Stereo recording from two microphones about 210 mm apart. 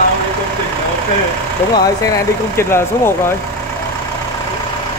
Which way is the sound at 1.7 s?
15° left (ahead or behind).